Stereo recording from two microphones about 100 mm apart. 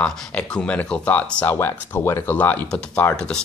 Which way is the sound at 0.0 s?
10° left (ahead or behind).